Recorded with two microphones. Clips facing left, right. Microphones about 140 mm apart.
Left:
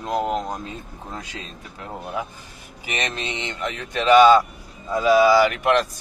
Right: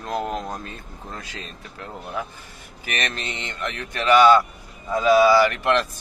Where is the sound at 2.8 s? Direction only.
15° left (ahead or behind).